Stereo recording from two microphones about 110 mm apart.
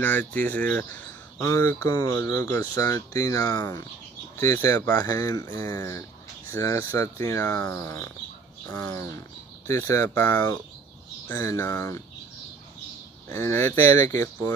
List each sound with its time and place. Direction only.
0.0 s speech: 15° left (ahead or behind)
1.4 s speech: 25° left (ahead or behind)
1.9 s speech: 35° left (ahead or behind)
4.9 s speech: 35° left (ahead or behind); by 10.4 s 15° left (ahead or behind)
11.2 s speech: 30° left (ahead or behind)
13.3 s speech: 20° left (ahead or behind)